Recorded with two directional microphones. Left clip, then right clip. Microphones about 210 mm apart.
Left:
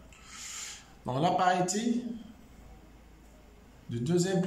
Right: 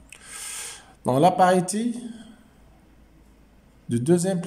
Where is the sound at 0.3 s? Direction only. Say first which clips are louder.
Right 5 dB; 40° right (ahead or behind).